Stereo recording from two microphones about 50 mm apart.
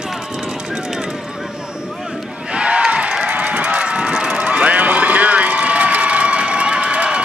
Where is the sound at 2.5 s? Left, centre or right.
Right.